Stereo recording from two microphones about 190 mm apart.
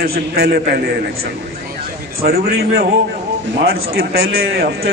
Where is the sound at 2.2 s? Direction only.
55° right (ahead or behind).